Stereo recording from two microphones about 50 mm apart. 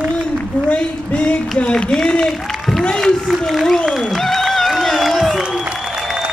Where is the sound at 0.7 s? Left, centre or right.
Left.